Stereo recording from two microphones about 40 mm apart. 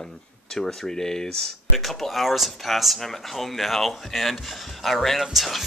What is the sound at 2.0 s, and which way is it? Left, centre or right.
Speech, centre.